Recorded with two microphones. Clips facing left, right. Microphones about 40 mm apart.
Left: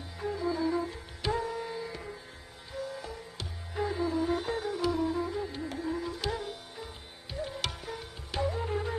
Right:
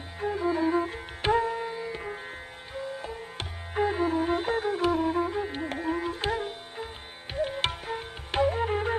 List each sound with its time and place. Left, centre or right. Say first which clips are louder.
0.2 s music: right 4 dB; right